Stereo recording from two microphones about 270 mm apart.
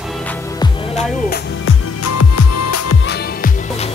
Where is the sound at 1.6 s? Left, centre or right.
Left.